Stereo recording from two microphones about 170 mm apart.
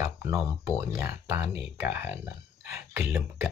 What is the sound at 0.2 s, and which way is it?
Speech, 15° right (ahead or behind).